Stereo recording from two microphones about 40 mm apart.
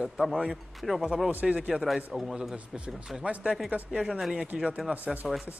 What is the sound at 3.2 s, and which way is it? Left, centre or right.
Speech, right.